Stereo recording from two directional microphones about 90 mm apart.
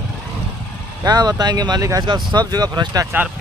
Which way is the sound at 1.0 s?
50° right (ahead or behind).